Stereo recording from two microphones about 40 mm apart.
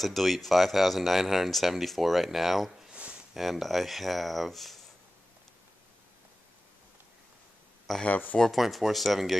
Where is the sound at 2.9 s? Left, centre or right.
Right.